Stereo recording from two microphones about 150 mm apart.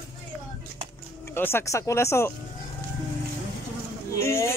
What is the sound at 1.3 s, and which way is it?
Speech, 15° left (ahead or behind).